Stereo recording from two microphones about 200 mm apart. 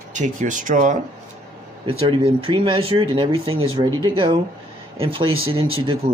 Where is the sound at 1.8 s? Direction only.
30° right (ahead or behind).